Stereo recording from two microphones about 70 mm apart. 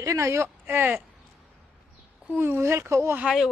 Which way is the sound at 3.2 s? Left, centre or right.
Centre.